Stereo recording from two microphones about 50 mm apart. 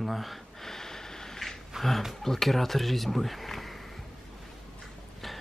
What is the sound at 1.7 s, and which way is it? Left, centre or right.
Speech, centre.